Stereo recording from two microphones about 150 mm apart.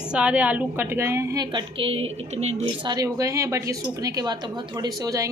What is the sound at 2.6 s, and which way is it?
Speech, 30° right (ahead or behind).